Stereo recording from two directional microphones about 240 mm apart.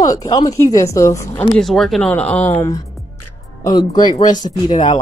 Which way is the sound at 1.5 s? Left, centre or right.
Centre.